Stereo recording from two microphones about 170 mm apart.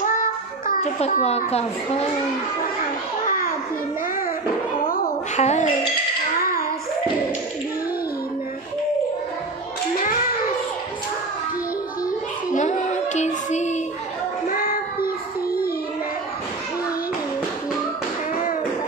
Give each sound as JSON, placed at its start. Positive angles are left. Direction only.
{"t": 0.0, "sound": "child singing", "side_deg": 50}
{"t": 0.9, "sound": "a child's voice", "side_deg": 40}
{"t": 4.8, "sound": "a woman's voice", "side_deg": 55}
{"t": 5.4, "sound": "a child's voice", "side_deg": 40}
{"t": 12.5, "sound": "music", "side_deg": 45}
{"t": 14.5, "sound": "music", "side_deg": 60}